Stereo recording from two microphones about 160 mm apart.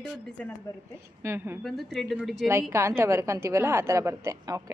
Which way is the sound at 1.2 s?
15° right (ahead or behind).